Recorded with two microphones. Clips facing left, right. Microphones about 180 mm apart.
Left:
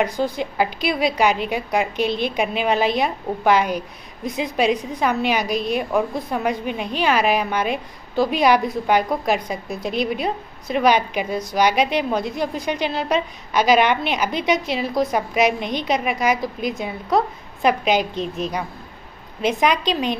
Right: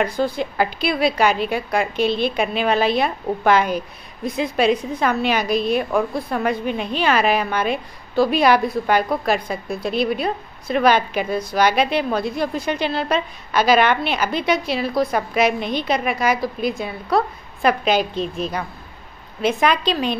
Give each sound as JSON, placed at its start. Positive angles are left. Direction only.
{"t": 0.0, "sound": "a woman's voice", "side_deg": 15}